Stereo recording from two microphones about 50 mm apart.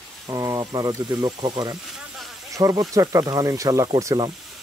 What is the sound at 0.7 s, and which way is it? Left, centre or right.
Speech, right.